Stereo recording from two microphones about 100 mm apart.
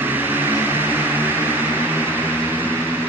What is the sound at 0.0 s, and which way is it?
Vehicle, 20° right (ahead or behind).